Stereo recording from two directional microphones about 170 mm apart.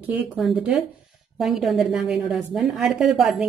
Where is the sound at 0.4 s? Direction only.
Centre (ahead or behind).